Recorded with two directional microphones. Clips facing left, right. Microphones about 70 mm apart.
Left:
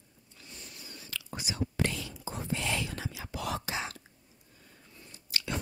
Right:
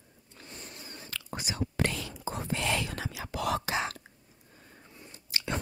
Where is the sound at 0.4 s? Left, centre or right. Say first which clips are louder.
Right 4 dB; right.